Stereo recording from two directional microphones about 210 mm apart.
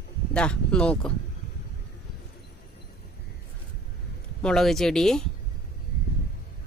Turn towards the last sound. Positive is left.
turn(degrees=0)  # may be behind; listen again after turning